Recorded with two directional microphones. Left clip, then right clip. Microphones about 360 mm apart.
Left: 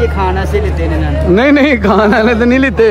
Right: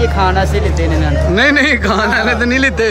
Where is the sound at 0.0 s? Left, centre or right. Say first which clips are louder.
Right 1 dB; centre.